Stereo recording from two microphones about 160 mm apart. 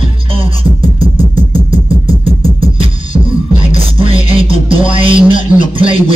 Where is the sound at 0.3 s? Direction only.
35° right (ahead or behind).